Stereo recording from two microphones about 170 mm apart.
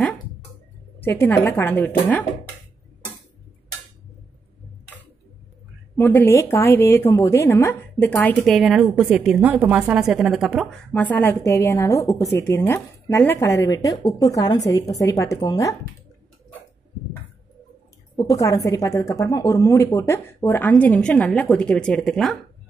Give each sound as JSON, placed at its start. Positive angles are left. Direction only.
{"t": 0.9, "sound": "speech", "side_deg": 10}
{"t": 5.9, "sound": "a woman's voice", "side_deg": 15}
{"t": 18.1, "sound": "speech", "side_deg": 20}